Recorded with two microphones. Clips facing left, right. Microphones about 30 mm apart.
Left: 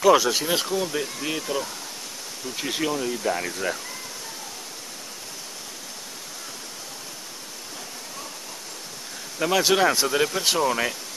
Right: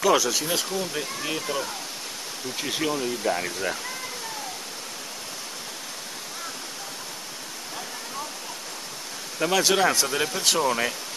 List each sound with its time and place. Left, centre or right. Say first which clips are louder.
0.2 s speech: left 2 dB; centre
0.5 s speech: left 3 dB; centre
9.4 s speech: left 1 dB; centre